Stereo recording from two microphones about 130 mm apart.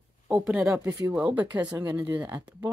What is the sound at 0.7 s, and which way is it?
Speech, 25° right (ahead or behind).